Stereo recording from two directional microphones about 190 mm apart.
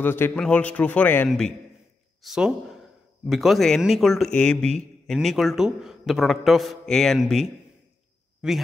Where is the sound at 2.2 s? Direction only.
5° right (ahead or behind).